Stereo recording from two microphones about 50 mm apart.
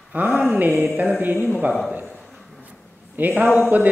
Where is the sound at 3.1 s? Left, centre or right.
Right.